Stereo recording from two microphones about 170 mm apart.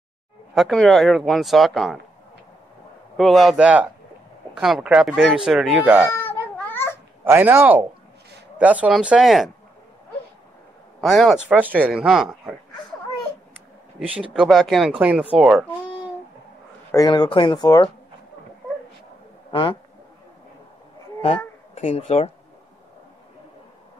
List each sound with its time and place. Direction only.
0.6 s speech: centre (ahead or behind)
3.2 s speech: centre (ahead or behind)
6.1 s babbling: 10° left (ahead or behind)
7.2 s speech: 15° right (ahead or behind)
11.0 s speech: centre (ahead or behind)
14.3 s speech: 5° right (ahead or behind)
16.9 s speech: 25° left (ahead or behind)
19.5 s speech: 30° left (ahead or behind)
21.7 s speech: 40° left (ahead or behind)